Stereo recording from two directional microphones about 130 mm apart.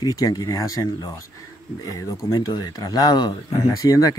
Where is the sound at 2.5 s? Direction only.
30° left (ahead or behind).